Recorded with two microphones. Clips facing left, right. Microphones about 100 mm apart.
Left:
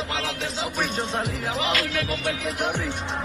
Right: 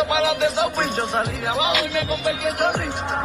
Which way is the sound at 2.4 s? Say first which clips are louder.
Right 7 dB; 55° right (ahead or behind).